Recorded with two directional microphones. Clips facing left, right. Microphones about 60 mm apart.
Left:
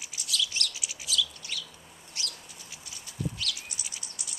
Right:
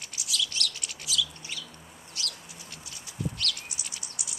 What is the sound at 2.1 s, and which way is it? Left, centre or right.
Chicken, left.